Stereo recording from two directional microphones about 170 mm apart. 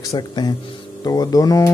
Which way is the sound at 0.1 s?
30° left (ahead or behind).